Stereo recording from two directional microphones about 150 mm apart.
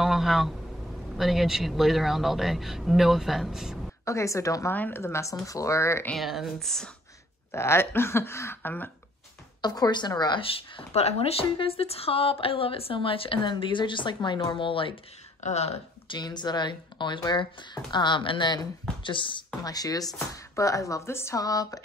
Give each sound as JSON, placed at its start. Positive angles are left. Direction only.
{"t": 0.0, "sound": "a sound", "side_deg": 0}
{"t": 1.1, "sound": "a man's voice", "side_deg": 0}
{"t": 4.0, "sound": "speech", "side_deg": 20}
{"t": 6.1, "sound": "a man's voice", "side_deg": 0}
{"t": 7.5, "sound": "speech", "side_deg": 15}
{"t": 9.6, "sound": "speech", "side_deg": 25}
{"t": 15.4, "sound": "speech", "side_deg": 45}
{"t": 16.2, "sound": "speech", "side_deg": 30}